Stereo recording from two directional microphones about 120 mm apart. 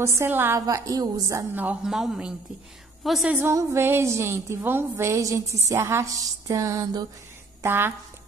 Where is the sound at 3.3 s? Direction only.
20° right (ahead or behind).